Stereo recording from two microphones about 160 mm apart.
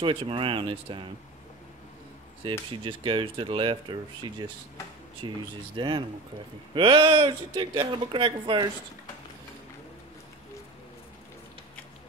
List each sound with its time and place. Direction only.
0.0 s speech: 35° right (ahead or behind)
2.7 s speech: 30° right (ahead or behind)